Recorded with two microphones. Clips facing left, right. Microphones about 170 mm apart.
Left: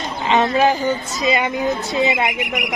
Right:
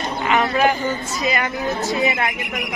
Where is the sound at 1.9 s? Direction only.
20° left (ahead or behind).